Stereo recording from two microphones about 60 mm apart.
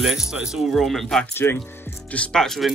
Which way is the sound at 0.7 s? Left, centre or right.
Centre.